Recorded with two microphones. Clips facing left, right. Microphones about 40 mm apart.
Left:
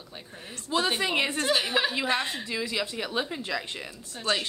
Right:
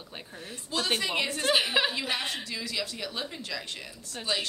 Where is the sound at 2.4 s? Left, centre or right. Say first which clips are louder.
Left 4 dB; left.